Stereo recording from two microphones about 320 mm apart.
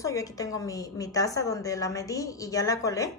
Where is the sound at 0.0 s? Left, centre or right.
Centre.